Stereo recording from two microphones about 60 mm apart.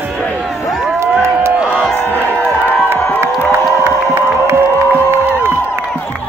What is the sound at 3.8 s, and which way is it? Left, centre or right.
Crowd, right.